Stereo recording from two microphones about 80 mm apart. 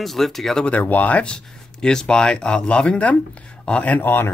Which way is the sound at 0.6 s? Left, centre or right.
Centre.